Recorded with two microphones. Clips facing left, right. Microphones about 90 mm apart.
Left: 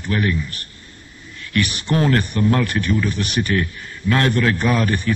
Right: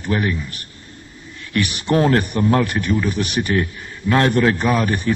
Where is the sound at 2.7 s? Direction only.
10° right (ahead or behind).